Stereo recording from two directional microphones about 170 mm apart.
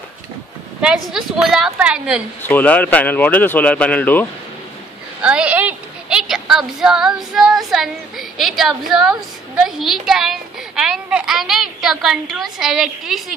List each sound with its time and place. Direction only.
0.7 s a woman's voice: 5° right (ahead or behind)
2.4 s speech: 10° left (ahead or behind)
5.2 s a sound: 5° right (ahead or behind)
9.7 s a woman's voice: centre (ahead or behind)